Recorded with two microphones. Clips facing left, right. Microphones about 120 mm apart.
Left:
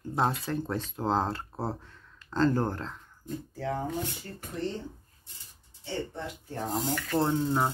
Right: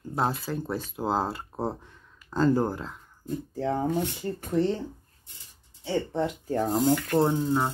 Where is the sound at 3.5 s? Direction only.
30° right (ahead or behind).